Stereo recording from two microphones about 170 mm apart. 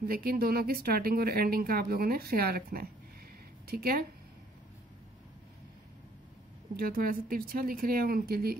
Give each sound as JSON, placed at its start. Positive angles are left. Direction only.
{"t": 0.0, "sound": "speech", "side_deg": -60}
{"t": 6.8, "sound": "speech", "side_deg": -60}